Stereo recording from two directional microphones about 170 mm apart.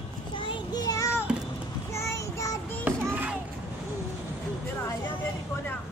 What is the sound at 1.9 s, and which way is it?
Child singing, 15° left (ahead or behind).